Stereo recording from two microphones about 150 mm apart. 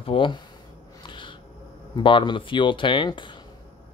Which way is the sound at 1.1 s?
35° left (ahead or behind).